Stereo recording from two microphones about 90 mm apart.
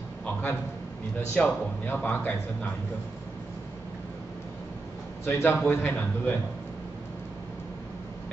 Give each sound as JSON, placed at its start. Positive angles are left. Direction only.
{"t": 1.3, "sound": "speech", "side_deg": 15}
{"t": 5.2, "sound": "a man's voice", "side_deg": 25}